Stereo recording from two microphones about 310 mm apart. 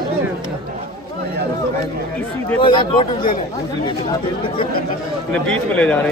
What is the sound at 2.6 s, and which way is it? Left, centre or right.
Speech, centre.